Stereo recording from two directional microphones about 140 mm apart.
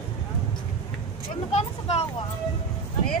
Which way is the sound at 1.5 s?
50° left (ahead or behind).